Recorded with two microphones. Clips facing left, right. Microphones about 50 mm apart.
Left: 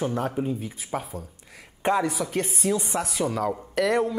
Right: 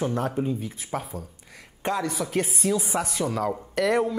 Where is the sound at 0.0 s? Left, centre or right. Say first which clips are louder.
Even; centre.